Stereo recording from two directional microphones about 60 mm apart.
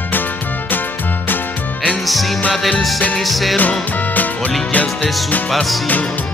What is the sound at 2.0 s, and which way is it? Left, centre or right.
Music, centre.